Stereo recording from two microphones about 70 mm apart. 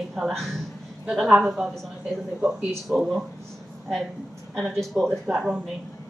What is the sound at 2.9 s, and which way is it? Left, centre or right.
Speech, centre.